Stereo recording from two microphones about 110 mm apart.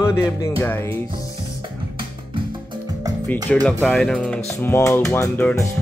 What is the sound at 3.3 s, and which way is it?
Speech, 15° left (ahead or behind).